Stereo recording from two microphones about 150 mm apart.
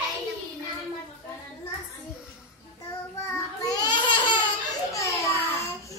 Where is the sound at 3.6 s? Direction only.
25° left (ahead or behind).